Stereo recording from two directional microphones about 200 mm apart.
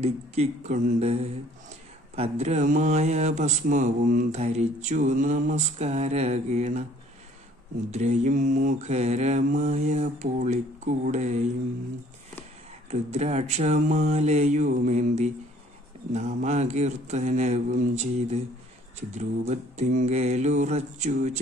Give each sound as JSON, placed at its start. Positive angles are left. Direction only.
{"t": 0.0, "sound": "speech", "side_deg": -35}
{"t": 7.9, "sound": "speech", "side_deg": -35}
{"t": 12.9, "sound": "speech", "side_deg": -35}